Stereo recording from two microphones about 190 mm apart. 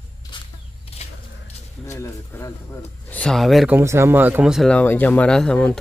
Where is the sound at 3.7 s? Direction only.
15° right (ahead or behind).